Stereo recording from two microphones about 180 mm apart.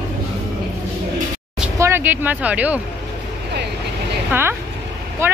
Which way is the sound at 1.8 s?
10° right (ahead or behind).